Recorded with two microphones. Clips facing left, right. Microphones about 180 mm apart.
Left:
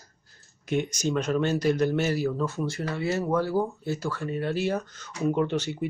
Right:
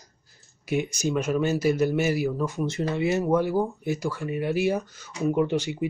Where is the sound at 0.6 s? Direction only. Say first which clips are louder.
Right 1 dB; 10° right (ahead or behind).